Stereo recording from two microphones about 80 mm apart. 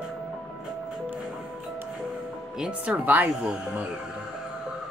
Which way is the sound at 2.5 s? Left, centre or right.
Centre.